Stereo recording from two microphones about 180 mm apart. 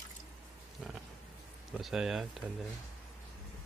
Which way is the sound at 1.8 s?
Centre (ahead or behind).